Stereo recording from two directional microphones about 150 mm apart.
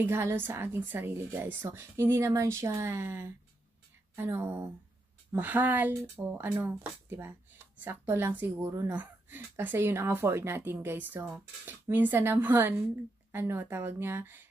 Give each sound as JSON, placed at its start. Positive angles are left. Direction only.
{"t": 0.0, "sound": "speech", "side_deg": -15}